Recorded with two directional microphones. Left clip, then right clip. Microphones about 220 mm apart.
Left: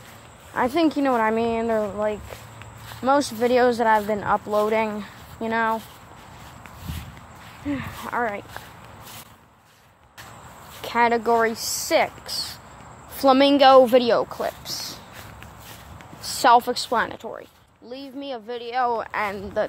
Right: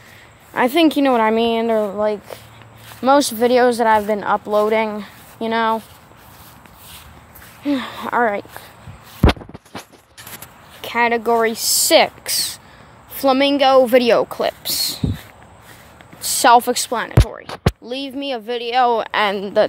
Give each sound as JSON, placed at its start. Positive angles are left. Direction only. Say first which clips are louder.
{"t": 0.5, "sound": "speech", "louder": "right 6 dB", "side_deg": -25}
{"t": 7.6, "sound": "speech", "louder": "right 8 dB", "side_deg": -45}
{"t": 10.8, "sound": "speech", "louder": "right 3 dB", "side_deg": -10}
{"t": 11.6, "sound": "speech", "louder": "right 8 dB", "side_deg": -30}
{"t": 13.1, "sound": "a woman's voice", "louder": "right 1 dB", "side_deg": -10}
{"t": 13.8, "sound": "speech", "louder": "right 5 dB", "side_deg": -25}
{"t": 16.3, "sound": "speech", "louder": "right 5 dB", "side_deg": -20}
{"t": 16.9, "sound": "a woman's voice", "louder": "right 3 dB", "side_deg": -5}
{"t": 17.8, "sound": "speech", "louder": "right 9 dB", "side_deg": -70}
{"t": 18.8, "sound": "speech", "louder": "right 8 dB", "side_deg": -35}